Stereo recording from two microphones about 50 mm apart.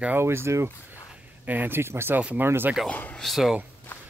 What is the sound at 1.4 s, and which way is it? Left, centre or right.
Speech, right.